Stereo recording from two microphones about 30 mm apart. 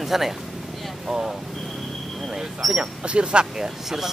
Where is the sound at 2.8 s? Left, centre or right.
Right.